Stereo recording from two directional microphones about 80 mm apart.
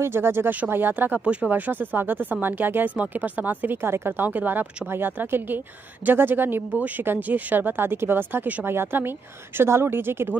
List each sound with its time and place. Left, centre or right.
0.0 s speech: right
1.2 s speech: centre
1.5 s speech: right